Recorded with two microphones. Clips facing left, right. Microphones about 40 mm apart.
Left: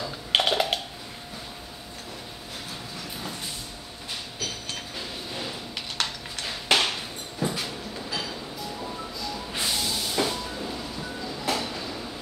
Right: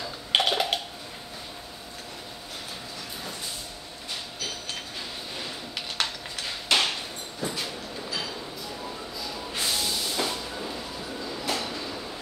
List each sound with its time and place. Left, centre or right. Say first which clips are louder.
0.0 s typing: left 1 dB; centre
4.9 s a sound: left 2 dB; centre
9.5 s train: even; centre